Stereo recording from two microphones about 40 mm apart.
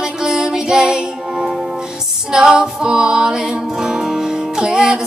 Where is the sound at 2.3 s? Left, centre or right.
Centre.